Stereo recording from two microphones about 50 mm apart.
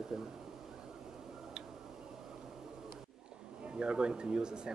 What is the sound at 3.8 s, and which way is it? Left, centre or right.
Speech, centre.